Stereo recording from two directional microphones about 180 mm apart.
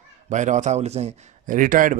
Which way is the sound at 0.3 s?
40° right (ahead or behind).